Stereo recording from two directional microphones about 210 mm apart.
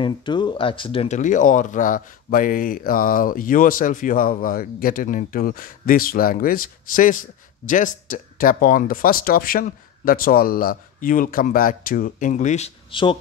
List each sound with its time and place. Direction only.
0.0 s speech: 20° left (ahead or behind)